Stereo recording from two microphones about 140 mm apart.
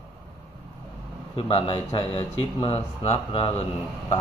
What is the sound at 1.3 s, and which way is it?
A man's voice, 40° left (ahead or behind).